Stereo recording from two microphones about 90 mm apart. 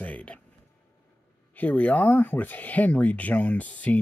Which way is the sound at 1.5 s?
15° left (ahead or behind).